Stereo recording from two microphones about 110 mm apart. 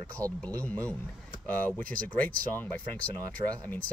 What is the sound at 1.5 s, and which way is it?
Speech, 15° left (ahead or behind).